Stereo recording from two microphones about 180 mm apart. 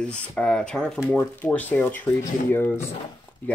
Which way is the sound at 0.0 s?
5° left (ahead or behind).